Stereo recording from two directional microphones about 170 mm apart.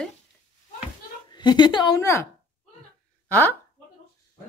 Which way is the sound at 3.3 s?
10° left (ahead or behind).